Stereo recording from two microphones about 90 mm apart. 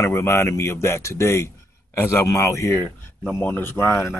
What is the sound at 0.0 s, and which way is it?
Speech, 30° left (ahead or behind).